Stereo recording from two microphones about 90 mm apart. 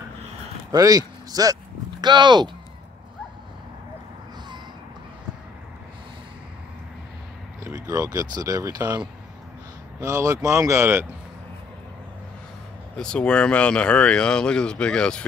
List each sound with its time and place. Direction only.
0.7 s speech: 45° right (ahead or behind)
7.6 s speech: 40° right (ahead or behind)
10.0 s speech: 35° right (ahead or behind)
12.9 s speech: 10° left (ahead or behind)